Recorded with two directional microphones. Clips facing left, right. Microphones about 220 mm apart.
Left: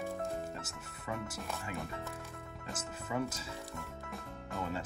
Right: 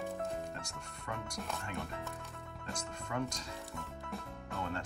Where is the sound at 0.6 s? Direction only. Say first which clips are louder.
Even; 5° left (ahead or behind).